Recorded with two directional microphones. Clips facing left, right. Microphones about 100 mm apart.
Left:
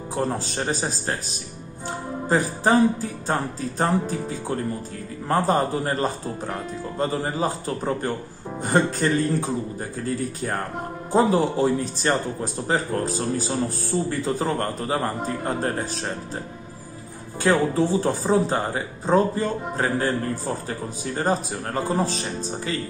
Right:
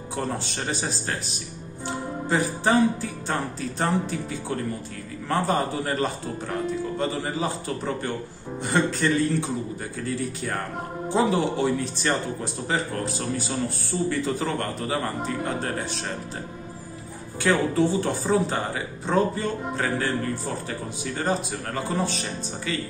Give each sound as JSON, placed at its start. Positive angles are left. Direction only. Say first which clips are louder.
{"t": 0.1, "sound": "speech", "louder": "left 3 dB", "side_deg": 35}
{"t": 17.4, "sound": "speech", "louder": "left 1 dB", "side_deg": 35}